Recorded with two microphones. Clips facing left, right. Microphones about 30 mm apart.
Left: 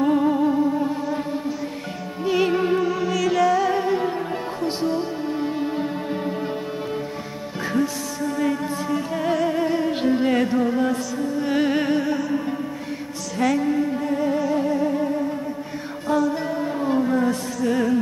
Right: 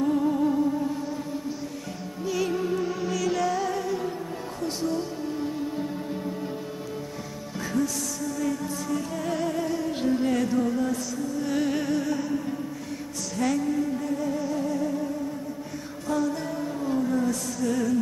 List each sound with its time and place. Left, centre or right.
0.0 s music: left
2.2 s music: left
2.8 s music: centre
3.1 s music: centre
3.6 s music: left
7.7 s music: left
13.4 s music: left
16.3 s music: left